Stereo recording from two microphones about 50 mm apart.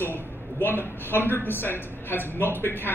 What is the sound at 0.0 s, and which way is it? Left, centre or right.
A woman's voice, left.